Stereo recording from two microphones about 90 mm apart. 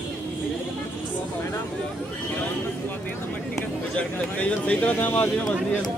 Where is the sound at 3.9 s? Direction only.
15° left (ahead or behind).